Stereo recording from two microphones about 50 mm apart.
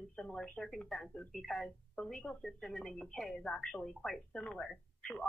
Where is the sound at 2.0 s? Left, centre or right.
Left.